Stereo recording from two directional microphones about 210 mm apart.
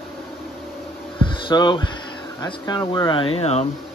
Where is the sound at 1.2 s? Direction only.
20° left (ahead or behind).